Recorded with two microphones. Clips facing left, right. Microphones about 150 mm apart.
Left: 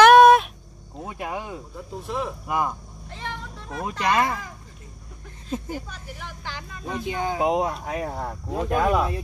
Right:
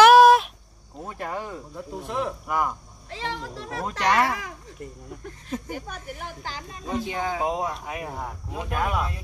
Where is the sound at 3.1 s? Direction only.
75° right (ahead or behind).